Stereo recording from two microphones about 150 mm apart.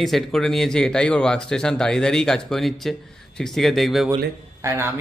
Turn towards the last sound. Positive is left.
turn(degrees=-15)  # may be behind; listen again after turning